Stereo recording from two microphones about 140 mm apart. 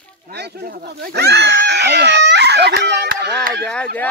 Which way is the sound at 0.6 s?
90° right.